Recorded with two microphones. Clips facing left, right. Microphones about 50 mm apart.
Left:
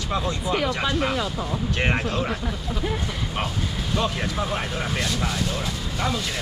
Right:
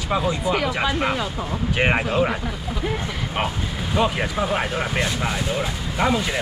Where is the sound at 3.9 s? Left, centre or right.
Centre.